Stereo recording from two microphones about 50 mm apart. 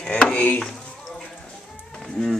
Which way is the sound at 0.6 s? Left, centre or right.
Centre.